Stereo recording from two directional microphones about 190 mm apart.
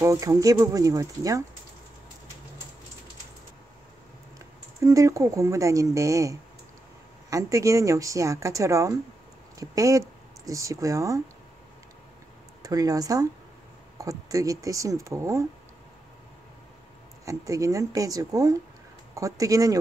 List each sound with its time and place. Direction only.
0.0 s a woman's voice: 15° right (ahead or behind)
4.8 s a woman's voice: 15° right (ahead or behind)
12.6 s a woman's voice: 20° right (ahead or behind)
17.2 s a woman's voice: 15° right (ahead or behind)